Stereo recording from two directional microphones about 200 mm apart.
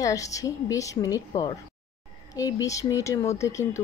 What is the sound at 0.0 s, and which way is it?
A woman's voice, 15° left (ahead or behind).